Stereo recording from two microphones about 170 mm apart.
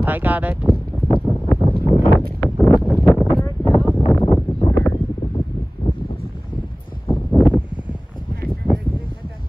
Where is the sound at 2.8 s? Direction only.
5° left (ahead or behind).